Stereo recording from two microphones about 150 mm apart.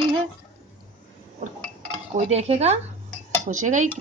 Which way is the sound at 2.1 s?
45° right (ahead or behind).